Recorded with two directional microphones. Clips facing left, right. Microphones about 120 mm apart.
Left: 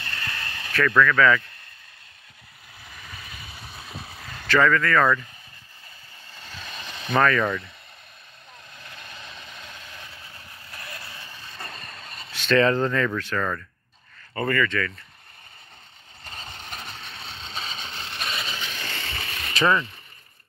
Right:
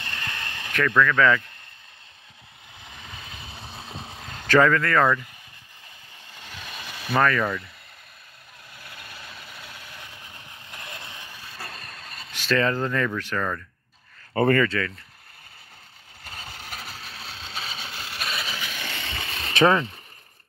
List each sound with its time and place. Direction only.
0.0 s vehicle: 15° right (ahead or behind)
2.8 s vehicle: 20° right (ahead or behind)
4.6 s speech: 30° right (ahead or behind)
5.0 s speech: 15° right (ahead or behind)
6.3 s a sound: 15° right (ahead or behind)
8.7 s vehicle: 10° right (ahead or behind)
12.3 s speech: 5° right (ahead or behind)
14.3 s speech: 65° right (ahead or behind)
16.3 s a sound: 5° right (ahead or behind)
19.5 s speech: 55° right (ahead or behind)